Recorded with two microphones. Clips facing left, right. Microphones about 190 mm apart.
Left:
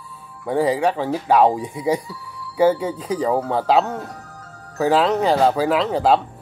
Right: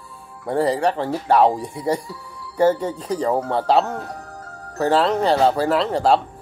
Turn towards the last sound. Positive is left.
turn(degrees=5)  # may be behind; listen again after turning